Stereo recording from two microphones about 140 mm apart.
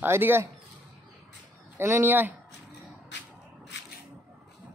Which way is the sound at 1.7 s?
15° right (ahead or behind).